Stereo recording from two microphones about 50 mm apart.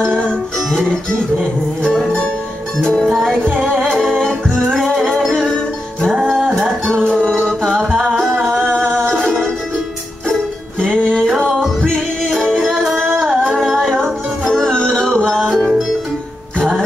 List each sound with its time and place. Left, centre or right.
0.0 s music: centre
3.0 s music: centre
3.9 s music: centre
6.1 s music: centre
6.6 s music: centre
7.2 s music: centre
9.2 s music: centre
11.1 s music: centre